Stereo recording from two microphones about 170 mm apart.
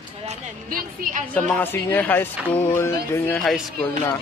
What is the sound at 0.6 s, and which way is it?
Speech, 55° right (ahead or behind).